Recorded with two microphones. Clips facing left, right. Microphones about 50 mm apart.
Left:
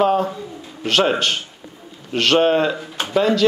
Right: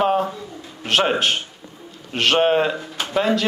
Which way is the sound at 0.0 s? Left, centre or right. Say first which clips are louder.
Left 2 dB; centre.